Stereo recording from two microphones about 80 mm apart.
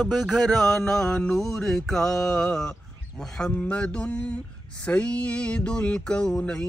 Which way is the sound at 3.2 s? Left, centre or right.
Centre.